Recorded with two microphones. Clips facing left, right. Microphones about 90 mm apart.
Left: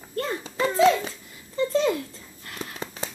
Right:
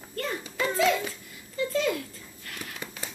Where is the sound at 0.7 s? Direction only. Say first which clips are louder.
Left 6 dB; 25° left (ahead or behind).